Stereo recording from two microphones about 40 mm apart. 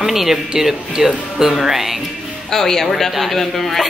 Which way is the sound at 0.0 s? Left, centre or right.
Centre.